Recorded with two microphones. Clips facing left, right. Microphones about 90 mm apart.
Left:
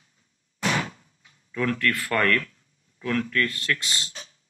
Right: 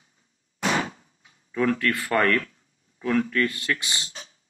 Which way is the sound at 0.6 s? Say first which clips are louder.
Right 1 dB; 20° right (ahead or behind).